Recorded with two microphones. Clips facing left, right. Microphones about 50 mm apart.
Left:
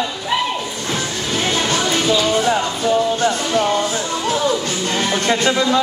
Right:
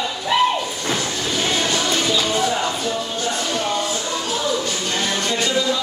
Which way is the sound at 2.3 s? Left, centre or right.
Left.